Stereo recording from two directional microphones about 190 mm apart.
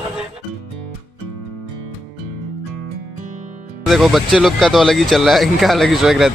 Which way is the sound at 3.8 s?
Centre (ahead or behind).